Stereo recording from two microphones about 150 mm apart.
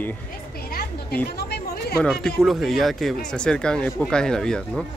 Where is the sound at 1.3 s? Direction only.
90° left.